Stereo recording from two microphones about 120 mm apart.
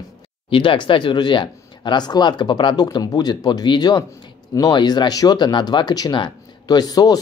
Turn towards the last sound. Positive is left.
turn(degrees=30)  # may be behind; listen again after turning